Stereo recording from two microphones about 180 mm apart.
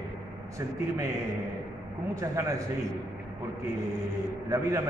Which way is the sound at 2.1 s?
20° right (ahead or behind).